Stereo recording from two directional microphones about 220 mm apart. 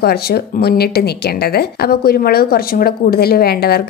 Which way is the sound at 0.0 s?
45° left (ahead or behind).